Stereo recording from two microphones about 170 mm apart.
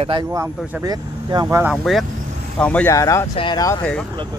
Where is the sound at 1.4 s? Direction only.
10° right (ahead or behind).